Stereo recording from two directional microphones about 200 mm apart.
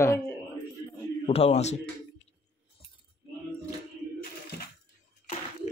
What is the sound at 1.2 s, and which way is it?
Speech, 30° left (ahead or behind).